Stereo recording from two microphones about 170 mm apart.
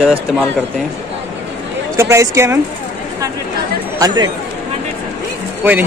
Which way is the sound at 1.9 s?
15° right (ahead or behind).